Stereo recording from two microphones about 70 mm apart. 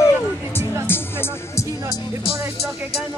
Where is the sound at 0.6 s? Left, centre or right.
Left.